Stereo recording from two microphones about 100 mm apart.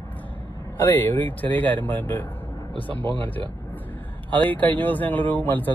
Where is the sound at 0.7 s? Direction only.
25° left (ahead or behind).